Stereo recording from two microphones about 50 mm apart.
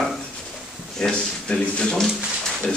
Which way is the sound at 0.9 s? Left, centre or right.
Centre.